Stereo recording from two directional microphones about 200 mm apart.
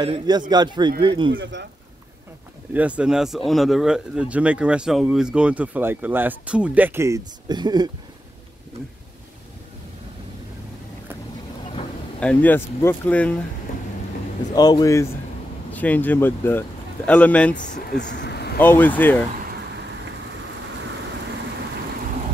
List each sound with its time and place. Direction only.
0.0 s a man's voice: 20° right (ahead or behind)
1.3 s speech: 65° right (ahead or behind)
2.7 s speech: 5° right (ahead or behind)
12.2 s speech: 5° left (ahead or behind)
14.5 s speech: 20° left (ahead or behind)
17.6 s speech: 40° left (ahead or behind)
17.9 s vehicle: 60° left (ahead or behind)
18.6 s speech: 10° left (ahead or behind)